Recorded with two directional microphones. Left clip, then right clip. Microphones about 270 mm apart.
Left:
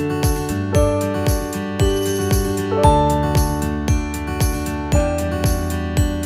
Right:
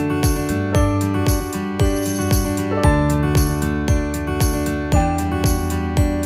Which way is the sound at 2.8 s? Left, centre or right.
Centre.